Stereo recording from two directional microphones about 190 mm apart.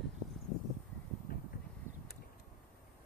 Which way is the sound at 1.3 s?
50° left (ahead or behind).